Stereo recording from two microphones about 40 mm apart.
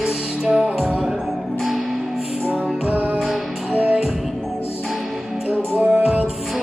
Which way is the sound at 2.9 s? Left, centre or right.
Right.